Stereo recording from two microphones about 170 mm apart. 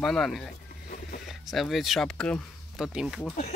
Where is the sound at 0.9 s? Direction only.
60° left (ahead or behind).